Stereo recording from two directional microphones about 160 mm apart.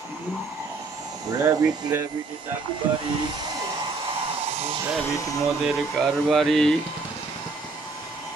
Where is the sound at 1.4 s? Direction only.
20° right (ahead or behind).